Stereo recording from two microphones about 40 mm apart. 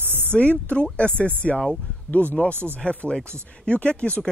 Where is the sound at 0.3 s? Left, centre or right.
Left.